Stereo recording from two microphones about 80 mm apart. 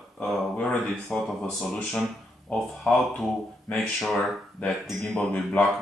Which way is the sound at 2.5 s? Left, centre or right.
Centre.